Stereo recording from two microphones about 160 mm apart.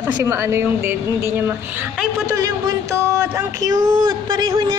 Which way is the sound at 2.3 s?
20° right (ahead or behind).